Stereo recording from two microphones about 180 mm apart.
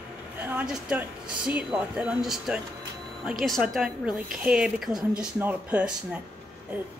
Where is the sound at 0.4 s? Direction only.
10° right (ahead or behind).